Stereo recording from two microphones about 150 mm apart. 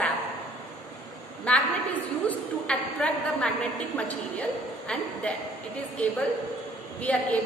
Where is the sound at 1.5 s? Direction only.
5° left (ahead or behind).